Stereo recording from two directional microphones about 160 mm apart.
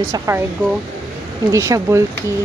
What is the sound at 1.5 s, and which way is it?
Speech, 20° right (ahead or behind).